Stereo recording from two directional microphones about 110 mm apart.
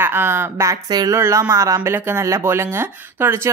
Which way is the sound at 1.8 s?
20° right (ahead or behind).